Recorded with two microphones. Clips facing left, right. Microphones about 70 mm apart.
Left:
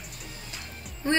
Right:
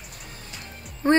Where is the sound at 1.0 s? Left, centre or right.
Right.